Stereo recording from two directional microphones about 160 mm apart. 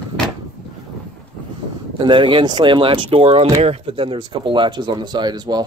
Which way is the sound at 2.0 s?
30° right (ahead or behind).